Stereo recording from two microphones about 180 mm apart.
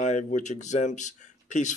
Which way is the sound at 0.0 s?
40° left (ahead or behind).